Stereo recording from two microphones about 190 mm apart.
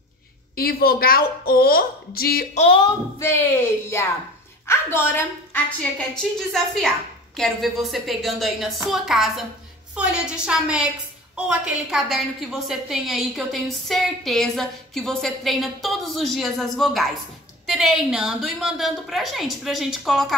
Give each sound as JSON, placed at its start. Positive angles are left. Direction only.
{"t": 0.6, "sound": "a woman's voice", "side_deg": 50}
{"t": 2.5, "sound": "speech", "side_deg": 30}
{"t": 3.2, "sound": "a woman's voice", "side_deg": 10}